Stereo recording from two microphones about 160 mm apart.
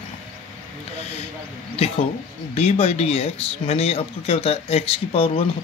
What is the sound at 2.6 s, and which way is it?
Speech, 40° left (ahead or behind).